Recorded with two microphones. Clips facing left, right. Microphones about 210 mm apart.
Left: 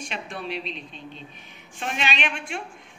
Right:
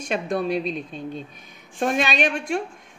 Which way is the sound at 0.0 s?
45° right (ahead or behind).